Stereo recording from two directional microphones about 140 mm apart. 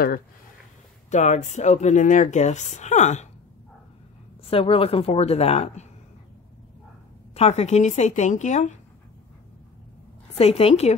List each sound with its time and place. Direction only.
1.1 s a woman's voice: 60° left (ahead or behind)
4.5 s a woman's voice: 40° left (ahead or behind)
7.3 s a woman's voice: 50° left (ahead or behind)
10.3 s a woman's voice: 45° left (ahead or behind)